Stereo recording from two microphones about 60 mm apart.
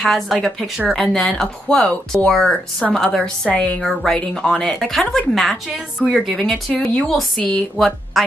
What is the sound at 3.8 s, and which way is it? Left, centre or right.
Speech, centre.